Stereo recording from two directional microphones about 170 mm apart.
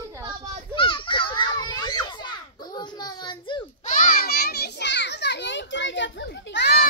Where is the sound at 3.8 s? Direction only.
50° left (ahead or behind).